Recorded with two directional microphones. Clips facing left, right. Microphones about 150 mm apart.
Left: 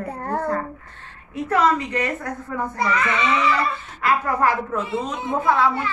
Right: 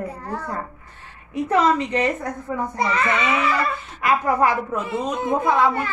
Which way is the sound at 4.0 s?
15° right (ahead or behind).